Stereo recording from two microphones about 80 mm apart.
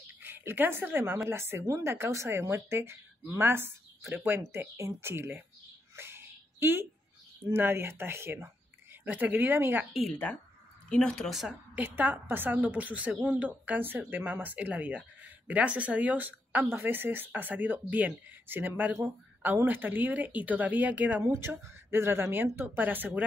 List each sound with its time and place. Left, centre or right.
0.2 s speech: right
5.9 s a sound: right
7.4 s speech: right
9.0 s a woman's voice: right
10.9 s speech: centre
11.7 s a woman's voice: right
21.2 s a woman's voice: right